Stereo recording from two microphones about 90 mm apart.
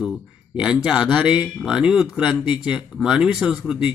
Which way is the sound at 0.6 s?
5° right (ahead or behind).